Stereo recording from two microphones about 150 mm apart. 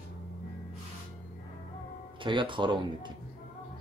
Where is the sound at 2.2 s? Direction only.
35° right (ahead or behind).